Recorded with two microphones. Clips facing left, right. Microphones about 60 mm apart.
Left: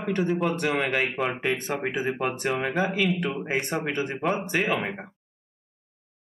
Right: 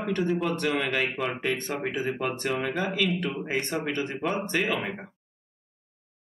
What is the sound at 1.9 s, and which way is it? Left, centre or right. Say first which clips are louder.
Speech: left 1 dB; centre.